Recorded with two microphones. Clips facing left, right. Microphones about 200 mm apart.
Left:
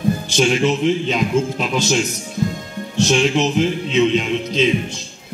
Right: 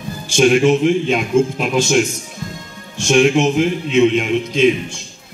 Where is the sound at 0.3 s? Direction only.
50° right (ahead or behind).